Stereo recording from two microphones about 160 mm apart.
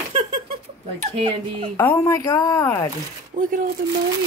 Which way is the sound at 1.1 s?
30° right (ahead or behind).